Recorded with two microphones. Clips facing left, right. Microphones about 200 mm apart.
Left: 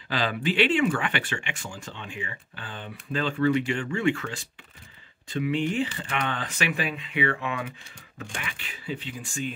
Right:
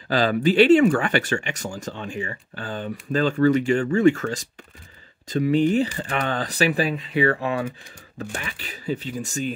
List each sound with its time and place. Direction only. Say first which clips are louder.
0.1 s speech: right 8 dB; 40° right (ahead or behind)